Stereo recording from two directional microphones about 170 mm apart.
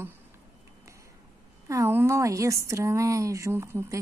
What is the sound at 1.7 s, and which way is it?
Speech, 15° right (ahead or behind).